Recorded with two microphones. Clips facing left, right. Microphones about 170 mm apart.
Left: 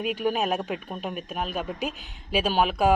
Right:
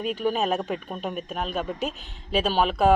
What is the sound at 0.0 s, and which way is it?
Speech, 10° left (ahead or behind).